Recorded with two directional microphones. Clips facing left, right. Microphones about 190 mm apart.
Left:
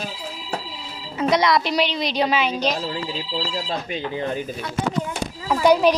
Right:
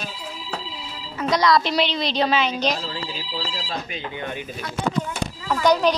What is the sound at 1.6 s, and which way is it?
A woman's voice, 10° left (ahead or behind).